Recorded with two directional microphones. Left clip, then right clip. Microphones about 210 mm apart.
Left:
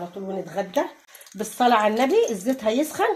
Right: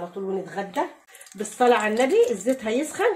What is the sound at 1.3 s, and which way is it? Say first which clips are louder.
Speech: even; 40° left (ahead or behind).